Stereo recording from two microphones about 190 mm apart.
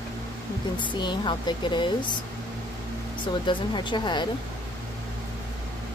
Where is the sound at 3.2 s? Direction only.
25° left (ahead or behind).